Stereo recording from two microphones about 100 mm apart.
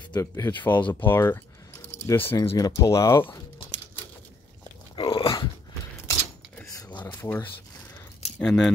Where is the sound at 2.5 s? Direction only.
35° left (ahead or behind).